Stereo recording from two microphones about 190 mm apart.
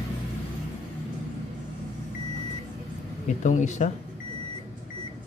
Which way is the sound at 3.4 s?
40° left (ahead or behind).